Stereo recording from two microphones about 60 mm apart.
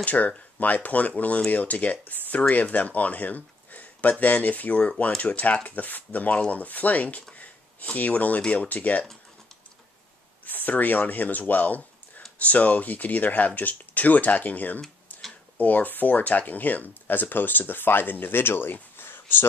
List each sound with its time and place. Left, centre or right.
0.0 s speech: left
7.3 s a sound: left
8.4 s speech: left
10.4 s speech: left